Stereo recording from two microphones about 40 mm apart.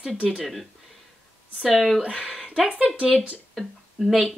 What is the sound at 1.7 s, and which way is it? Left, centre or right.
Speech, centre.